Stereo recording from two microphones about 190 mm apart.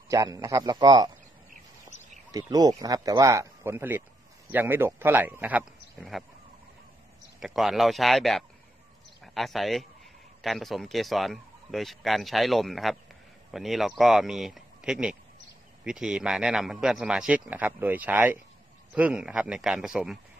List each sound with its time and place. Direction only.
0.1 s speech: 15° right (ahead or behind)
2.3 s speech: 20° right (ahead or behind); by 6.2 s 5° right (ahead or behind)
7.3 s a man's voice: centre (ahead or behind)